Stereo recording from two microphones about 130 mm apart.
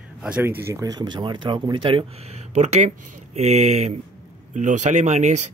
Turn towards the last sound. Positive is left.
turn(degrees=-65)  # may be behind; listen again after turning